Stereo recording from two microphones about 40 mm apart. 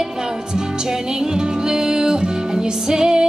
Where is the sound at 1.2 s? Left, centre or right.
Centre.